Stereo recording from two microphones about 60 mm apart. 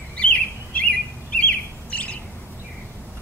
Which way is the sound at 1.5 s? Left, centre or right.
Left.